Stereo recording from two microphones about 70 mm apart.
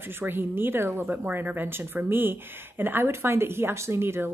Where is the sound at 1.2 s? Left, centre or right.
Right.